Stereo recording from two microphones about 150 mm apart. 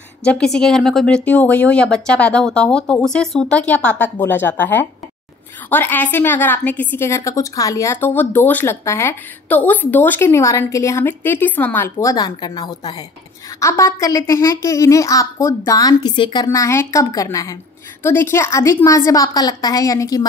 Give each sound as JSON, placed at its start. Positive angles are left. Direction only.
{"t": 0.2, "sound": "a woman's voice", "side_deg": 5}
{"t": 16.4, "sound": "a woman's voice", "side_deg": 20}